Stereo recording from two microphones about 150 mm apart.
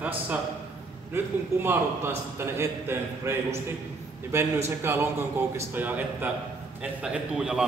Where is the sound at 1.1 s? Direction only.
15° right (ahead or behind).